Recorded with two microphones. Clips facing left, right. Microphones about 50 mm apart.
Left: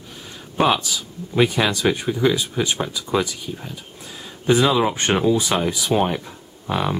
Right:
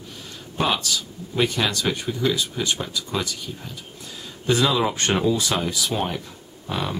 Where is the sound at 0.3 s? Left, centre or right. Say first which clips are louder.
Left 5 dB; centre.